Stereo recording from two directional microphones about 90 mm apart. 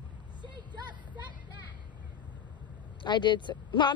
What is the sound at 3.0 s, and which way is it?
Speech, 60° left (ahead or behind).